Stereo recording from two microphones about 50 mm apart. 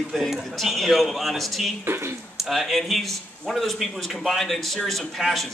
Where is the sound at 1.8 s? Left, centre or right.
Right.